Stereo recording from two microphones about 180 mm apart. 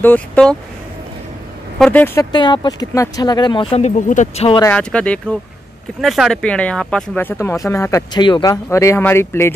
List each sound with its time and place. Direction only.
0.0 s speech: 10° left (ahead or behind)
1.8 s speech: 10° left (ahead or behind)
2.3 s speech: 25° left (ahead or behind)
3.7 s speech: 40° left (ahead or behind)
4.6 s speech: 10° left (ahead or behind)